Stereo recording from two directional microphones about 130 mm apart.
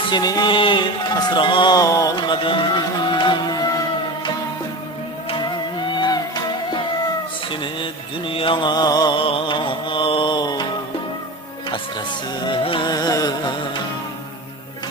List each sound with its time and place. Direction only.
0.1 s speech: 30° left (ahead or behind)
5.9 s music: 35° left (ahead or behind)
8.3 s music: 40° left (ahead or behind)
12.4 s speech: 40° left (ahead or behind)